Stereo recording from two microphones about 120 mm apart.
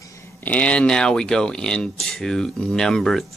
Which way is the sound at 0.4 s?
10° left (ahead or behind).